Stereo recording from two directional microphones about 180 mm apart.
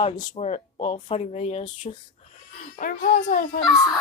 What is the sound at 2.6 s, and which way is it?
Speech, 45° left (ahead or behind).